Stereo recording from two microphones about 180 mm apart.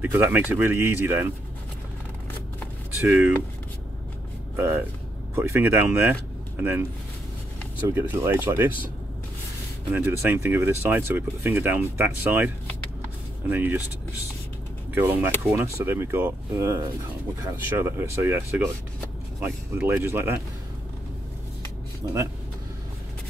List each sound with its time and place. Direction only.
0.0 s speech: 10° right (ahead or behind)
3.0 s speech: 10° right (ahead or behind)
4.6 s speech: 15° right (ahead or behind)
7.9 s speech: 15° right (ahead or behind)
9.9 s speech: 10° right (ahead or behind)
13.5 s speech: 10° right (ahead or behind)
15.0 s speech: 10° right (ahead or behind)
19.4 s speech: 10° right (ahead or behind)
22.0 s speech: 20° right (ahead or behind)